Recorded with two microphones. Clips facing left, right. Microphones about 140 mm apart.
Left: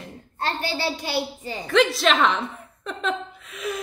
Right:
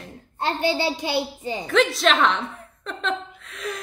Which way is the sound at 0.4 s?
20° right (ahead or behind).